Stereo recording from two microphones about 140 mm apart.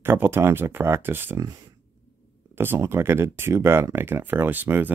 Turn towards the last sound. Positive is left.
turn(degrees=-15)  # may be behind; listen again after turning